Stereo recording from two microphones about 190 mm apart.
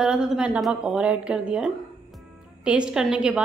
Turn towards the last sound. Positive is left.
turn(degrees=-5)  # may be behind; listen again after turning